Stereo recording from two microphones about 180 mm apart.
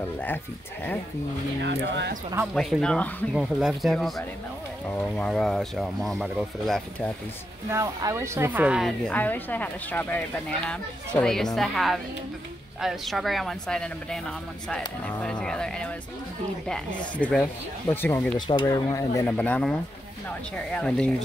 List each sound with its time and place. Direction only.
1.6 s speech: 70° right (ahead or behind)
2.5 s speech: centre (ahead or behind)
5.1 s speech: 5° left (ahead or behind)
7.7 s speech: 15° right (ahead or behind); by 18.4 s 10° left (ahead or behind)
18.5 s speech: 20° left (ahead or behind); by 21.1 s 5° left (ahead or behind)